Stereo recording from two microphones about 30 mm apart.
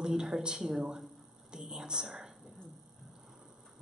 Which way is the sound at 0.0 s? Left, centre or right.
Right.